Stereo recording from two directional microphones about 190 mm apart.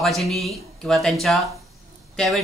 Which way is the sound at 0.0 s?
Centre (ahead or behind).